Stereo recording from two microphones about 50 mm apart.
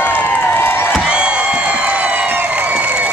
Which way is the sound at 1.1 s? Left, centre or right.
Centre.